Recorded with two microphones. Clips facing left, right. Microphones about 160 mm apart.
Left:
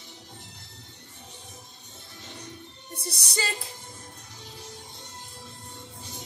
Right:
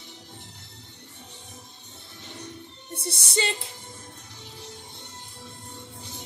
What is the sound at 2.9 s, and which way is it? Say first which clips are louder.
Music: right 4 dB; 25° right (ahead or behind).